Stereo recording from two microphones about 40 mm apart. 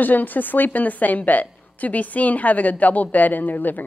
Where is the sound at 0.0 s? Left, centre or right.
Left.